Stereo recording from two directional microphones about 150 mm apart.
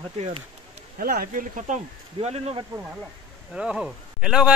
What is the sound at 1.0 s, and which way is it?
Speech, 85° right.